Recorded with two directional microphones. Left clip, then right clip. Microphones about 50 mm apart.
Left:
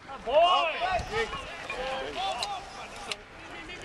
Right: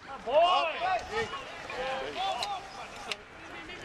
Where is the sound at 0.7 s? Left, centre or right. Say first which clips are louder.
Left 1 dB; centre.